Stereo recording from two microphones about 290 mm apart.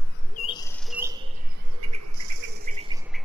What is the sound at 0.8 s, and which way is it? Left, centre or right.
Cricket, centre.